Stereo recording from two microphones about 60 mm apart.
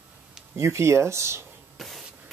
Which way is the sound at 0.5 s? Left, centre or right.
Right.